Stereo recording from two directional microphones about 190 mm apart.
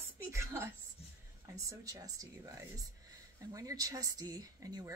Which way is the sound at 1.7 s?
15° right (ahead or behind).